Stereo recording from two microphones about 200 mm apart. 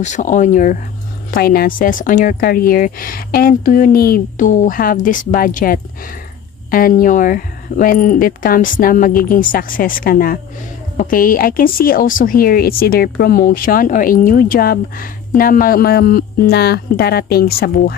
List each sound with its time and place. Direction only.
0.0 s speech: 40° left (ahead or behind)